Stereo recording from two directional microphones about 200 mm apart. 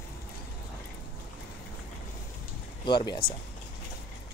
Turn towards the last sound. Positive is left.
turn(degrees=20)  # may be behind; listen again after turning